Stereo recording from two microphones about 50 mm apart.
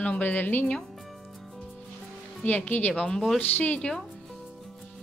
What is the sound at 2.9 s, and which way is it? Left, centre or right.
Speech, centre.